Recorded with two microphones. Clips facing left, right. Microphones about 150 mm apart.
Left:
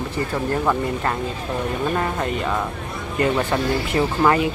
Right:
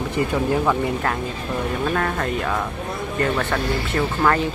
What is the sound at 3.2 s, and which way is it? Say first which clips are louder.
Speech: left 3 dB; 10° left (ahead or behind).